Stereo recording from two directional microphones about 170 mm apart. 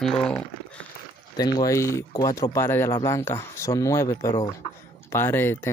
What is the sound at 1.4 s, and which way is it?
Speech, 25° left (ahead or behind).